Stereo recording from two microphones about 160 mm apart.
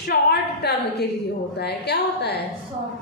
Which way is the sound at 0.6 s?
90° left.